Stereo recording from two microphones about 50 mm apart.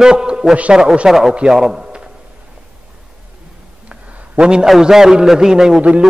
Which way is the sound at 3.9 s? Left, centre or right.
Right.